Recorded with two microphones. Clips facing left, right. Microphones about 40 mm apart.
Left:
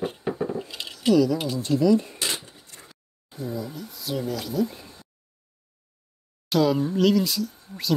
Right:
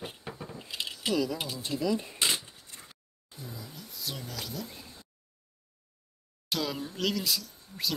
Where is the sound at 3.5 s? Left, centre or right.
Centre.